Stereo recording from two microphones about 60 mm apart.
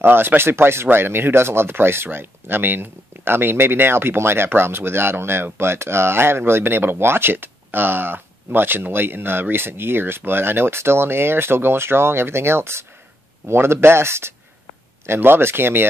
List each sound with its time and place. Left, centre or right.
0.0 s speech: right